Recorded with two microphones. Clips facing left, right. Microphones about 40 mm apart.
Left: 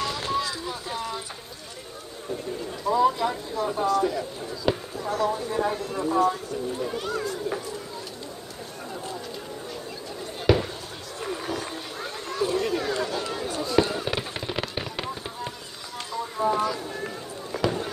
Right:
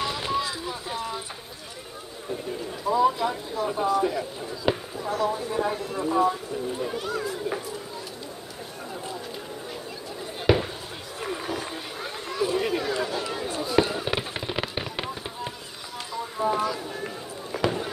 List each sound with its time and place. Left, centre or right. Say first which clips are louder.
0.0 s boat: even; centre
0.7 s a sound: even; centre
2.9 s speech: even; centre
6.8 s chatter: even; centre
10.4 s basketball bounce: even; centre
11.1 s run: even; centre
11.5 s a sound: even; centre
13.9 s fireworks: right 1 dB; centre
16.1 s a sound: left 2 dB; centre
16.4 s speech: left 1 dB; centre
17.6 s basketball bounce: even; centre